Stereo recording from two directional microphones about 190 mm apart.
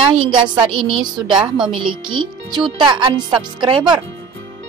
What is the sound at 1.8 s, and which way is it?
Speech, 25° right (ahead or behind).